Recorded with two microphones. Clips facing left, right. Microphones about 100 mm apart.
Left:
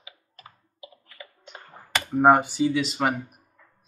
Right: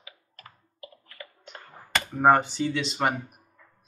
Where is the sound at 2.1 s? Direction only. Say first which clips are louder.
Left 3 dB; 10° left (ahead or behind).